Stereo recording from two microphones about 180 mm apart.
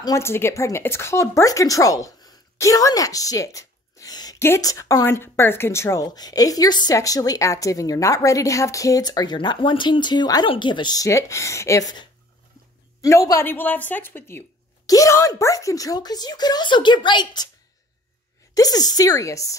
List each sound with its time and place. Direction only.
0.0 s a woman's voice: 15° left (ahead or behind)
18.5 s speech: 20° left (ahead or behind)